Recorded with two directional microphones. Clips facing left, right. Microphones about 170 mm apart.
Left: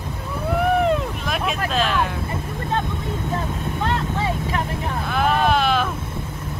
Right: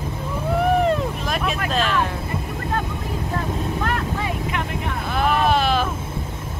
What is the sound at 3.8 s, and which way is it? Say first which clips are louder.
Vehicle: left 1 dB; 30° left (ahead or behind).